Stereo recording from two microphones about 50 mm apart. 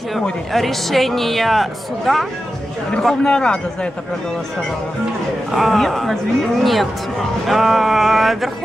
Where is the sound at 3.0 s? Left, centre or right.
Centre.